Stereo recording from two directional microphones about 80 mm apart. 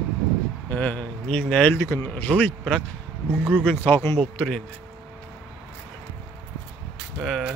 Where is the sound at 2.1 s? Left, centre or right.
Centre.